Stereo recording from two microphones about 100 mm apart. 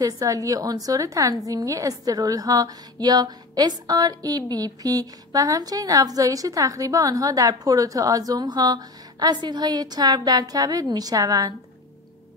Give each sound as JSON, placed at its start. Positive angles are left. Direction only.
{"t": 0.0, "sound": "a woman's voice", "side_deg": -35}